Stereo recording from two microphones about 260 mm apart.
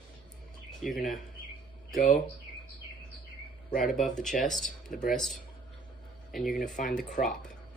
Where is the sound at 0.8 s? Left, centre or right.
Centre.